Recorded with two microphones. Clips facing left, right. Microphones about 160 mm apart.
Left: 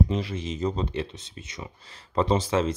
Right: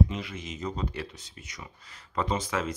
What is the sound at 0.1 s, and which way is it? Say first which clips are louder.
Speech: left 7 dB; 30° left (ahead or behind).